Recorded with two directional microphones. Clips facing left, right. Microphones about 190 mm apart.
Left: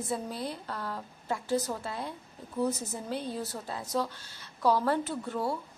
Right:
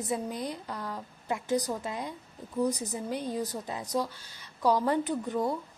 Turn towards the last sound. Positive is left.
turn(degrees=-15)  # may be behind; listen again after turning